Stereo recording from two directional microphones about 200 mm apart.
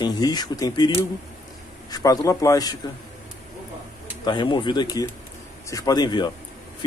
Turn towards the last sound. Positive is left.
turn(degrees=20)  # may be behind; listen again after turning